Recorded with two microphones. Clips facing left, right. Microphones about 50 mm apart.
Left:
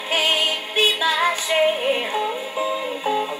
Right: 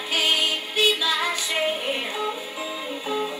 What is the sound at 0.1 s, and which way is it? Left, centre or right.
Music, left.